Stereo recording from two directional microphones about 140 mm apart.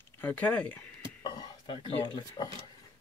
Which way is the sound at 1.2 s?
30° left (ahead or behind).